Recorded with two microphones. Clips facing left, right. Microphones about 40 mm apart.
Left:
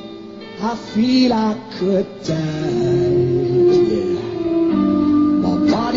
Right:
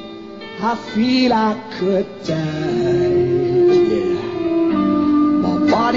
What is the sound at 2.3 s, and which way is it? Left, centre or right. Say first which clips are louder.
Music: right 1 dB; centre.